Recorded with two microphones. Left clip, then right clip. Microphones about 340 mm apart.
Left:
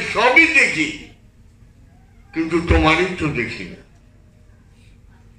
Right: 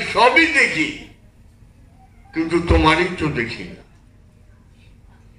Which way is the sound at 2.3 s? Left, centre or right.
Right.